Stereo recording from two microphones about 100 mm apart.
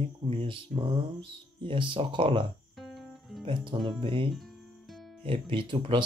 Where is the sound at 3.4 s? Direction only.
55° right (ahead or behind).